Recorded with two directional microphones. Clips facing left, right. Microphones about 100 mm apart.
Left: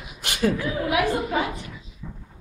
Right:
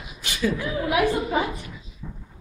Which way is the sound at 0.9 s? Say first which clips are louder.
Right 2 dB; 10° right (ahead or behind).